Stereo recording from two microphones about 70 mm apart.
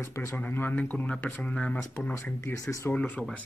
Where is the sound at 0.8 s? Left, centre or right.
Centre.